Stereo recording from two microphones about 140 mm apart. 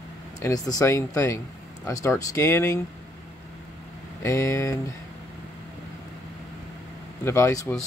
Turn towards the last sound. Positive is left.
turn(degrees=20)  # may be behind; listen again after turning